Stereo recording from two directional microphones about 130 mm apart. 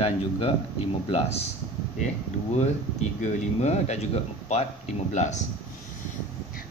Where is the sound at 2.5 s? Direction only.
60° left (ahead or behind).